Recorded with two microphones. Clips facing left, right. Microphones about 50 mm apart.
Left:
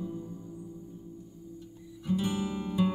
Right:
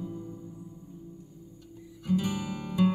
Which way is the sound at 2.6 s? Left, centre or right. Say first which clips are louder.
Right 4 dB; right.